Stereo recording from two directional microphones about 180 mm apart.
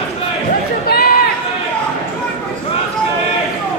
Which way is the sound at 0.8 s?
55° left (ahead or behind).